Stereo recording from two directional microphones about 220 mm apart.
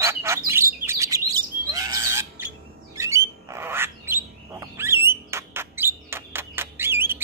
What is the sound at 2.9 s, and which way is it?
Squawk, 15° right (ahead or behind).